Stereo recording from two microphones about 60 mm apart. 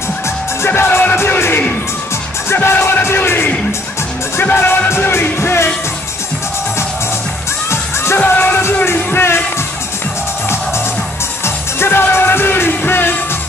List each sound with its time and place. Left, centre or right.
0.6 s music: left
4.8 s music: left
7.7 s music: left
8.3 s music: left
11.4 s music: left